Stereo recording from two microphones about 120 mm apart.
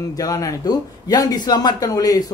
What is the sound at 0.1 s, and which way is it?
Speech, 30° left (ahead or behind).